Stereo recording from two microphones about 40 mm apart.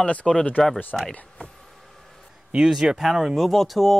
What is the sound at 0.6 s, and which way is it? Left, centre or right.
Speech, centre.